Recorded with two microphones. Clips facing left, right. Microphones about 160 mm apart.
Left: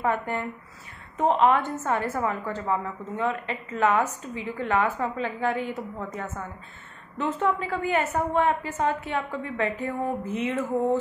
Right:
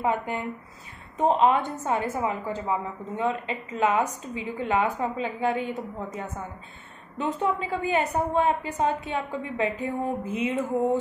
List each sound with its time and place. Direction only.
0.0 s a woman's voice: 15° right (ahead or behind)